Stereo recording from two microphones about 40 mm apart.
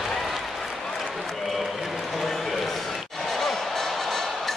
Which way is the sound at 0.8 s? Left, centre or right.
Centre.